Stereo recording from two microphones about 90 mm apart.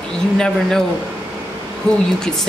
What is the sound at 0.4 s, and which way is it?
Speech, 5° left (ahead or behind).